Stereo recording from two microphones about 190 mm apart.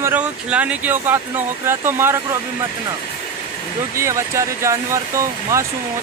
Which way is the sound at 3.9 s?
15° right (ahead or behind).